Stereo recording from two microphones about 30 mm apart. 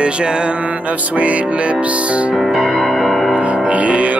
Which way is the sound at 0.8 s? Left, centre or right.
Right.